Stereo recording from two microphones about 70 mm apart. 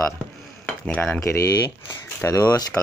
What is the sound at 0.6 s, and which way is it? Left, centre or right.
Cutlery, centre.